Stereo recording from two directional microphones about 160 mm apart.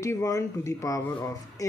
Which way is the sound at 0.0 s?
20° left (ahead or behind).